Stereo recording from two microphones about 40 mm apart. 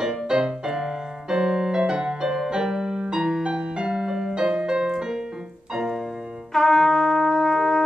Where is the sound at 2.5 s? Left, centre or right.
Centre.